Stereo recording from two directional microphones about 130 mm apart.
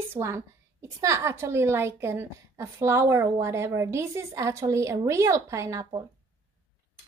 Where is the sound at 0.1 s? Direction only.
20° right (ahead or behind).